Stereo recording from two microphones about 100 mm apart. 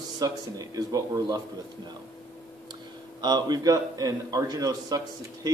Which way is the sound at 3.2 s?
45° right (ahead or behind).